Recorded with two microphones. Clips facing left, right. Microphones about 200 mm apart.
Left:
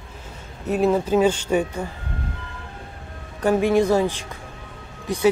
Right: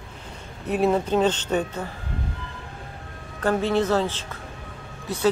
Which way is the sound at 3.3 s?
15° left (ahead or behind).